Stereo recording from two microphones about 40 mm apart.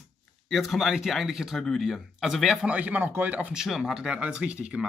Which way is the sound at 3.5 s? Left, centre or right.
Centre.